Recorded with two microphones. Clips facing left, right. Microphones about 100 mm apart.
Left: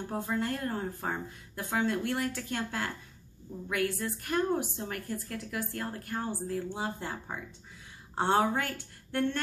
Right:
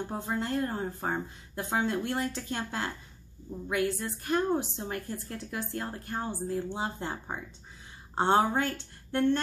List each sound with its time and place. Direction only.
0.1 s a woman's voice: 25° right (ahead or behind)